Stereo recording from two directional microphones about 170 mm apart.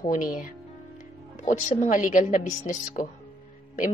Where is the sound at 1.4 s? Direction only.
50° left (ahead or behind).